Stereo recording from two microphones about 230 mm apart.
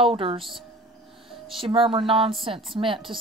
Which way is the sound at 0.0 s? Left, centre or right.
Right.